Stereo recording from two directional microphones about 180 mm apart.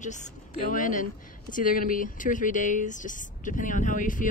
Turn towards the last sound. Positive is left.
turn(degrees=45)  # may be behind; listen again after turning